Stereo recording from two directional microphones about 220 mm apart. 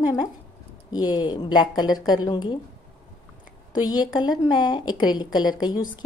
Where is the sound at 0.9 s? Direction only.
20° left (ahead or behind).